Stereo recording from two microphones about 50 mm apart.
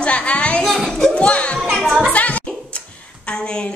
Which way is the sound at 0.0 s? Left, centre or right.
Left.